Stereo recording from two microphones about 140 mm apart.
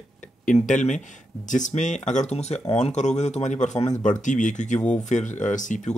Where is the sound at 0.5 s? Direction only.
65° left (ahead or behind).